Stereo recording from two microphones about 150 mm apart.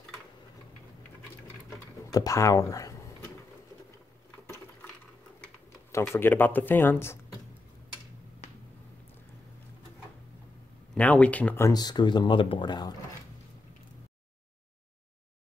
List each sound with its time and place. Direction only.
2.1 s speech: 20° left (ahead or behind)
5.9 s speech: 15° left (ahead or behind)
8.4 s finger snapping: 45° left (ahead or behind)
11.0 s speech: 10° left (ahead or behind)
11.7 s speech: 30° left (ahead or behind)